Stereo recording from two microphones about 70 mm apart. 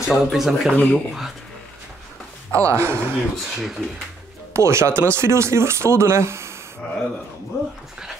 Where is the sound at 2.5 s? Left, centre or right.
Right.